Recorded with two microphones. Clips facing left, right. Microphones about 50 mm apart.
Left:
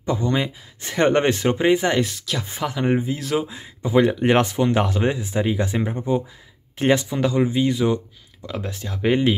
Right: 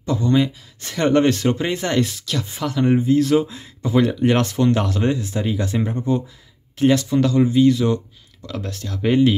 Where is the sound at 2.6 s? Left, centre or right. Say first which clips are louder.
Right 3 dB; centre.